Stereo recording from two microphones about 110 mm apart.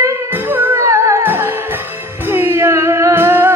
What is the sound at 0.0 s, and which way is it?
Music, 15° right (ahead or behind).